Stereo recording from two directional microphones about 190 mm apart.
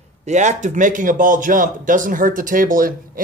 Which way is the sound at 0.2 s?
40° right (ahead or behind).